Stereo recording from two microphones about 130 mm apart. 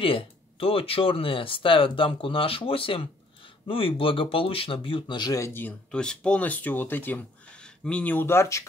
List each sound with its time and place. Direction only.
0.0 s speech: 45° left (ahead or behind); by 8.6 s 20° left (ahead or behind)